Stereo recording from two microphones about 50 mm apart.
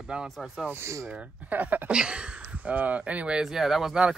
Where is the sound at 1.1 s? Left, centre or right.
Right.